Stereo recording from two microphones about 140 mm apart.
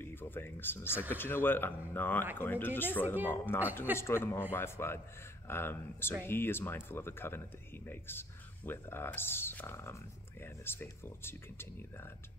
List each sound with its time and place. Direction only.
0.0 s speech: 15° left (ahead or behind)